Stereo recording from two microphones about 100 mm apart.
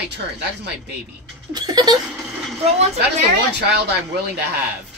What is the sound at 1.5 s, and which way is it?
Speech, 40° right (ahead or behind).